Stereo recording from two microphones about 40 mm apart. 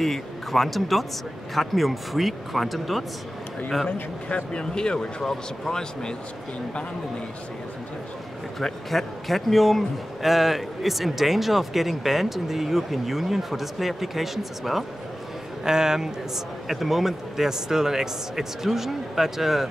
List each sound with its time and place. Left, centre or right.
0.0 s a man's voice: centre
4.5 s speech: left
8.5 s a man's voice: centre
15.6 s a man's voice: centre
16.6 s a man's voice: centre